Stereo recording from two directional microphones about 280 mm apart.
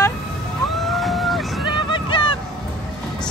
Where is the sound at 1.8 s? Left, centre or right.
Centre.